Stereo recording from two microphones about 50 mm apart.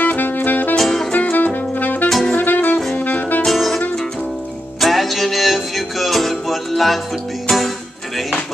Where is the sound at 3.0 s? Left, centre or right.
Left.